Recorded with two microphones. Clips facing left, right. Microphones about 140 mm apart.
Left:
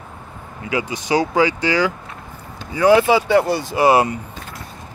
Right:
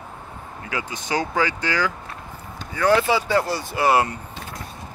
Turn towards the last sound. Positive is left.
turn(degrees=15)  # may be behind; listen again after turning